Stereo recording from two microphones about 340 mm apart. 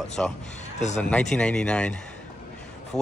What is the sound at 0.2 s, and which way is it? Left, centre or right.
Speech, centre.